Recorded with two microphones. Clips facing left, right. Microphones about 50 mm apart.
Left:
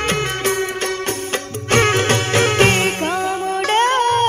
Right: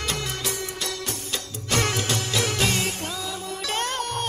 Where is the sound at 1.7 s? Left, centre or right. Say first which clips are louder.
Left 10 dB; left.